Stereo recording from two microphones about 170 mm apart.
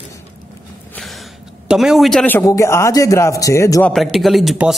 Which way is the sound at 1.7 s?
Centre (ahead or behind).